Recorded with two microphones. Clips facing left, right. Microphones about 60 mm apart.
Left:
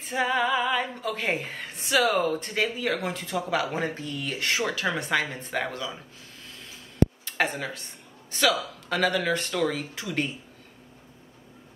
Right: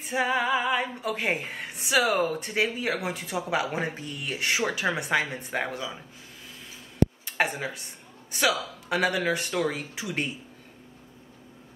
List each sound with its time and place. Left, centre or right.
0.1 s speech: centre
7.2 s speech: centre